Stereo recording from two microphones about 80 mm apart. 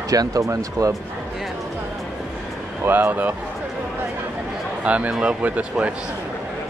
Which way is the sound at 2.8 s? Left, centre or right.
Right.